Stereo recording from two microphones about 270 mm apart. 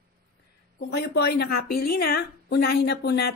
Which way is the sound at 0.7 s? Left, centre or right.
Left.